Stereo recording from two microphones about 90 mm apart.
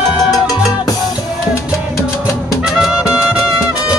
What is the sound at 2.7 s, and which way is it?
Music, 5° right (ahead or behind).